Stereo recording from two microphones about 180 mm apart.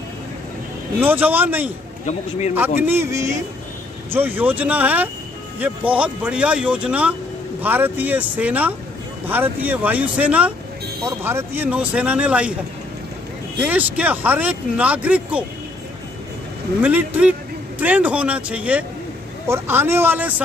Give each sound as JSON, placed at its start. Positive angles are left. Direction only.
{"t": 1.0, "sound": "speech", "side_deg": -10}
{"t": 2.0, "sound": "a man's voice", "side_deg": 40}
{"t": 2.9, "sound": "speech", "side_deg": -15}
{"t": 13.6, "sound": "speech", "side_deg": -10}
{"t": 16.8, "sound": "speech", "side_deg": -5}